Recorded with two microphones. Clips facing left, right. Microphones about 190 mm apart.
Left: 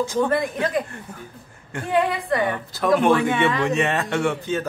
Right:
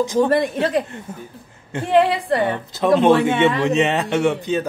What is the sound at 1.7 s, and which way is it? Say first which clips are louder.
A woman's voice: right 5 dB; 25° right (ahead or behind).